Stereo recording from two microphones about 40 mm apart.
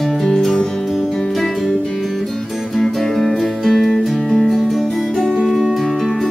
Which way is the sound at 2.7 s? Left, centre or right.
Centre.